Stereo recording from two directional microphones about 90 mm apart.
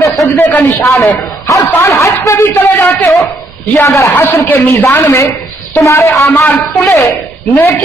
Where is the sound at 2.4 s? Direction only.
20° left (ahead or behind).